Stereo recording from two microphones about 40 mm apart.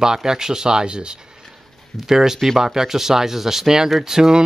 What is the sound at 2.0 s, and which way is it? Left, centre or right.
Speech, centre.